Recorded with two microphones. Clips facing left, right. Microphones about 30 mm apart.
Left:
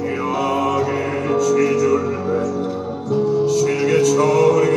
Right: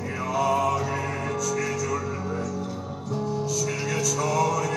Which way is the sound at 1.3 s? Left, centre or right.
Left.